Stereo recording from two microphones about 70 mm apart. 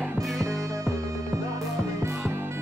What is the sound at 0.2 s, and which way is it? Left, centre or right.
Music, centre.